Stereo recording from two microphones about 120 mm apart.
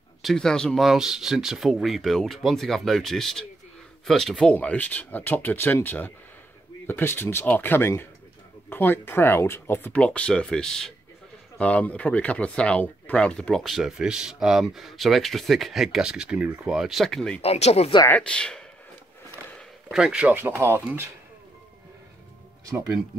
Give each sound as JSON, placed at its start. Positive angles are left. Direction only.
{"t": 0.2, "sound": "speech", "side_deg": 5}
{"t": 17.4, "sound": "speech", "side_deg": 60}
{"t": 18.0, "sound": "speech", "side_deg": 10}
{"t": 19.9, "sound": "speech", "side_deg": -5}